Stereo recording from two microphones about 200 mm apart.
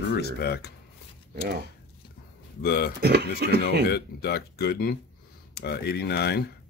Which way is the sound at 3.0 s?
55° right (ahead or behind).